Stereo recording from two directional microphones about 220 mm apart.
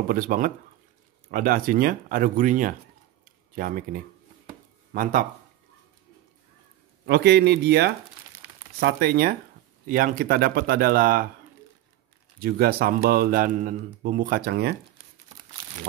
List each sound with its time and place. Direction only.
0.1 s speech: 40° right (ahead or behind)
7.1 s speech: 50° right (ahead or behind)
12.4 s speech: 45° right (ahead or behind)